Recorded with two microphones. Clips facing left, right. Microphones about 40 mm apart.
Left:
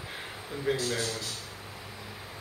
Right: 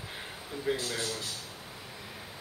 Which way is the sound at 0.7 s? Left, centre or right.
Centre.